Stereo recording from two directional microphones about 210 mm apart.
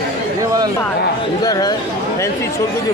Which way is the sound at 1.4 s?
20° left (ahead or behind).